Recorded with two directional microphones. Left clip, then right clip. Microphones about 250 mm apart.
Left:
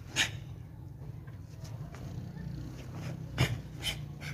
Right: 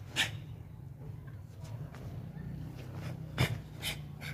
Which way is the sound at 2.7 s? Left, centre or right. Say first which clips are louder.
Left 1 dB; centre.